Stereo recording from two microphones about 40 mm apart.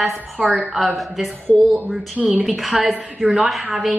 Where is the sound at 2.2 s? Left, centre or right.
Right.